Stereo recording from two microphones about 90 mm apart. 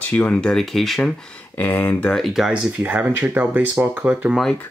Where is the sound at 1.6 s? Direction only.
20° left (ahead or behind).